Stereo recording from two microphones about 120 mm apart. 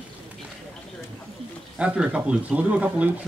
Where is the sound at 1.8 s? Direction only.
10° right (ahead or behind).